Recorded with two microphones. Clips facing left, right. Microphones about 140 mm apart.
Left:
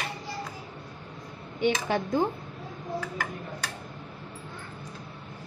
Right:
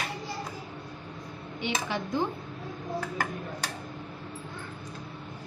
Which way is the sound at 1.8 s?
50° left (ahead or behind).